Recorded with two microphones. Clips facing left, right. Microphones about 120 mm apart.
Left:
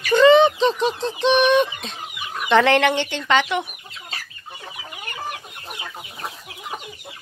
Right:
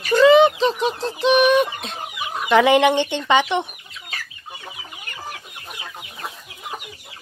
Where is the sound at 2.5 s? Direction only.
15° right (ahead or behind).